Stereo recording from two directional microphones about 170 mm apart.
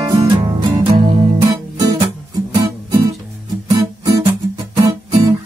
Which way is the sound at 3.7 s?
25° right (ahead or behind).